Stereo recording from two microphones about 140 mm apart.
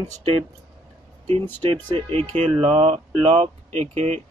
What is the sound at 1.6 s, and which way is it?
Speech, 45° right (ahead or behind).